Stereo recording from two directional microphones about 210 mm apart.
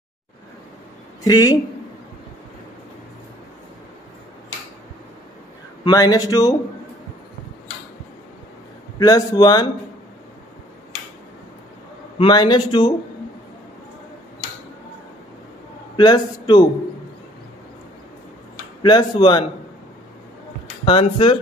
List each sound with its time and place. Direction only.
1.2 s speech: 20° left (ahead or behind)
5.9 s speech: 20° left (ahead or behind)
9.0 s speech: 15° left (ahead or behind)
12.2 s a man's voice: 20° left (ahead or behind)
16.0 s a man's voice: 20° left (ahead or behind)
18.8 s a man's voice: 20° left (ahead or behind)
20.8 s a man's voice: 25° left (ahead or behind)